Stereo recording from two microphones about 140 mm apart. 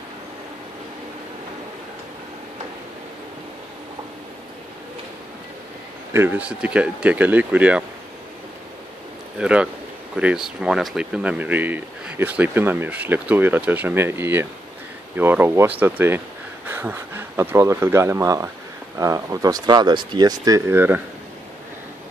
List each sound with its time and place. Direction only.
6.1 s speech: 15° right (ahead or behind)
9.4 s speech: 10° right (ahead or behind)